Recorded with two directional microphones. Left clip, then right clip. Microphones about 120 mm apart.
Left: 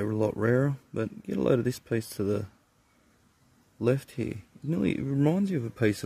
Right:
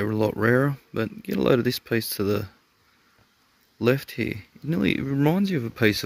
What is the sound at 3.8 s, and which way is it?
Speech, 5° right (ahead or behind).